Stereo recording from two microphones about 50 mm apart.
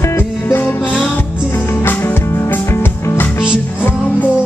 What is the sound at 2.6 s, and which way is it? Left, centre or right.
Music, left.